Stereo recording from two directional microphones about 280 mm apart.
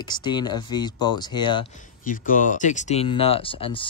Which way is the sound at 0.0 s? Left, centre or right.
Centre.